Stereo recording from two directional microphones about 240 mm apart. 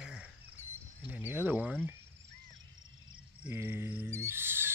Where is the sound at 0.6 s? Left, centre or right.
Centre.